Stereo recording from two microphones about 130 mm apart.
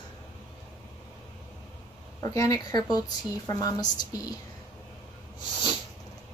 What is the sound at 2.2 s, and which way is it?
A woman's voice, 25° left (ahead or behind).